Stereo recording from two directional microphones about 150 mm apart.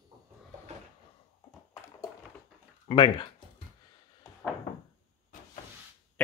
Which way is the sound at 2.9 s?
35° left (ahead or behind).